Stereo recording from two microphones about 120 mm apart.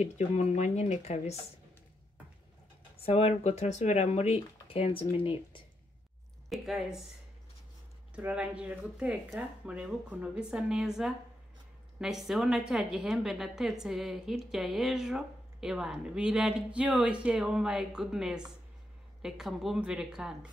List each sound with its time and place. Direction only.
0.0 s speech: 65° left (ahead or behind)
3.1 s speech: 55° left (ahead or behind)
6.5 s a woman's voice: 5° right (ahead or behind)
8.2 s a woman's voice: 10° right (ahead or behind)